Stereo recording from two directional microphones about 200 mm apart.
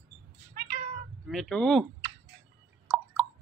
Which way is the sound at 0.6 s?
40° right (ahead or behind).